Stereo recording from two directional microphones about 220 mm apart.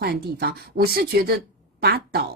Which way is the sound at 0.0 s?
45° right (ahead or behind).